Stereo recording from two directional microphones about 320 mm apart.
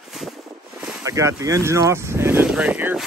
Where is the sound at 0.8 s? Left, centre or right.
Centre.